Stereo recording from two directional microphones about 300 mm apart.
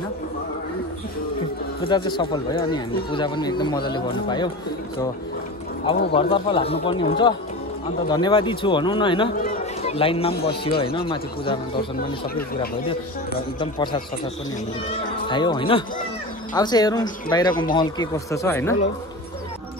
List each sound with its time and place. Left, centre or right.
1.8 s speech: centre
6.1 s speech: centre
8.1 s speech: centre
13.6 s speech: centre
15.2 s speech: centre